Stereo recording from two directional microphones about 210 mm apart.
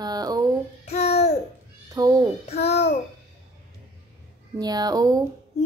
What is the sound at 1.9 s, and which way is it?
Speech, 15° right (ahead or behind).